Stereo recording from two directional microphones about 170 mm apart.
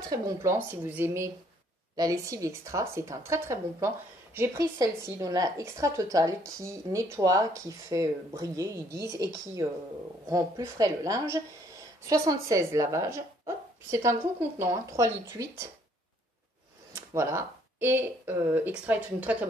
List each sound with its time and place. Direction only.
0.1 s a woman's voice: 20° right (ahead or behind)
10.3 s a woman's voice: 20° right (ahead or behind)
16.9 s speech: 15° right (ahead or behind)